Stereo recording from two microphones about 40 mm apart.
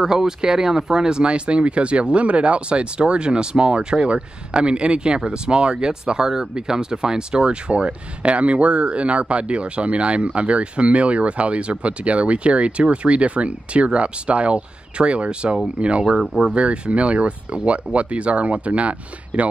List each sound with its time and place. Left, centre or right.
0.0 s speech: centre; by 19.4 s right